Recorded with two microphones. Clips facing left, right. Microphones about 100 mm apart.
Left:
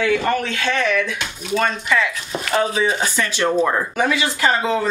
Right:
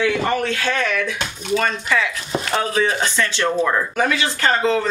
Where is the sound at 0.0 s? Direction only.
Centre (ahead or behind).